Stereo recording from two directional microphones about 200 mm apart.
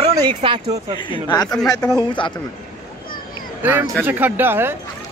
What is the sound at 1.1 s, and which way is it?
A man's voice, 20° left (ahead or behind).